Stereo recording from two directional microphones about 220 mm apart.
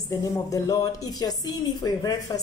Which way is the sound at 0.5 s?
15° left (ahead or behind).